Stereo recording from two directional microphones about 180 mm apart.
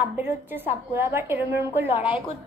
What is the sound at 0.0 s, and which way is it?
A woman's voice, 10° right (ahead or behind).